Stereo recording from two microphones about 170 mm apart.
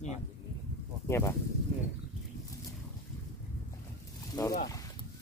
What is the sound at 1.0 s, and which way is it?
Speech, 15° left (ahead or behind).